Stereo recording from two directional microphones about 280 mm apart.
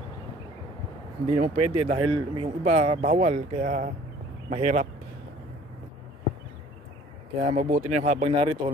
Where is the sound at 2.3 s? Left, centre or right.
Right.